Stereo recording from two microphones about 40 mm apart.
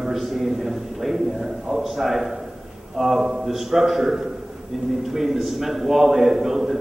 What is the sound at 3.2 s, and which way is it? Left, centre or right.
Speech, centre.